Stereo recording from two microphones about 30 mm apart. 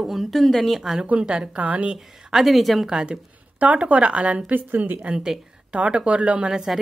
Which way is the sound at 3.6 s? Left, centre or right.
Right.